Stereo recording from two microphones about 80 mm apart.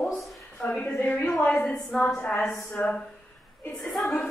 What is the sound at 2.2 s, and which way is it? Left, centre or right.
A woman's voice, centre.